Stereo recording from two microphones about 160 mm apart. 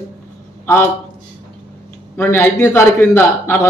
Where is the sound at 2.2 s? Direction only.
15° left (ahead or behind).